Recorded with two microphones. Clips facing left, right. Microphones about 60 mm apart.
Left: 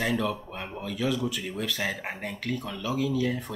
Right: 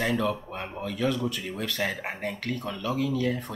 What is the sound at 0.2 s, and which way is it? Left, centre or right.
Speech, centre.